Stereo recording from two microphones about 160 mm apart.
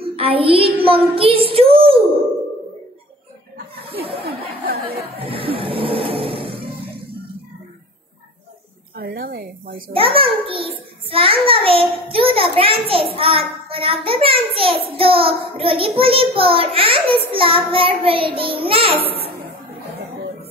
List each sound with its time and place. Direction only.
0.0 s child singing: 35° right (ahead or behind)
0.8 s a child's voice: 35° right (ahead or behind)
4.2 s a sound: 75° right (ahead or behind)
4.8 s music: 35° right (ahead or behind)
8.9 s a sound: 70° right (ahead or behind)
9.9 s a child's voice: 35° right (ahead or behind)